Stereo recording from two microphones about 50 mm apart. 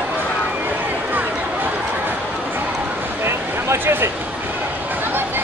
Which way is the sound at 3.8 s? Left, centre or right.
Right.